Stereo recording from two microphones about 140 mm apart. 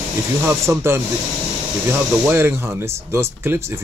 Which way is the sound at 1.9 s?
15° right (ahead or behind).